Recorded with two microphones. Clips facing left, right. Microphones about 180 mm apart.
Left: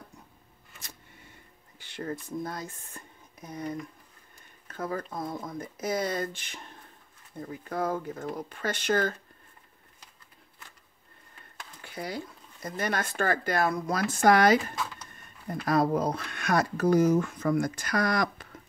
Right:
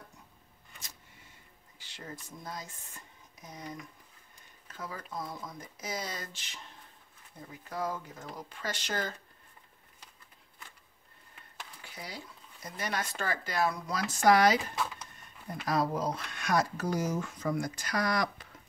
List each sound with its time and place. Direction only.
1.8 s speech: 55° left (ahead or behind)
7.7 s speech: 55° left (ahead or behind)
11.8 s a sound: 55° left (ahead or behind)
12.6 s speech: 50° left (ahead or behind)
15.6 s speech: 55° left (ahead or behind)